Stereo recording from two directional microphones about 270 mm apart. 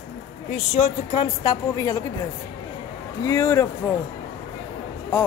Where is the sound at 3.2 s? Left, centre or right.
Centre.